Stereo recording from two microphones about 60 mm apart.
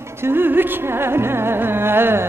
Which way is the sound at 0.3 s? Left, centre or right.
Right.